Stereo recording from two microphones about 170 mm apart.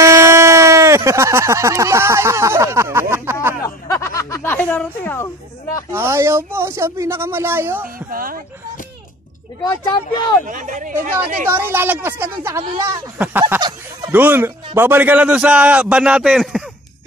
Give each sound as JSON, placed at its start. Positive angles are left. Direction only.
{"t": 0.0, "sound": "speech", "side_deg": -15}
{"t": 3.6, "sound": "a sound", "side_deg": 20}
{"t": 5.9, "sound": "speech", "side_deg": -15}
{"t": 8.1, "sound": "speech", "side_deg": -55}
{"t": 10.4, "sound": "speech", "side_deg": -50}
{"t": 11.5, "sound": "speech", "side_deg": -15}
{"t": 13.6, "sound": "fowl", "side_deg": -25}
{"t": 14.1, "sound": "speech", "side_deg": -10}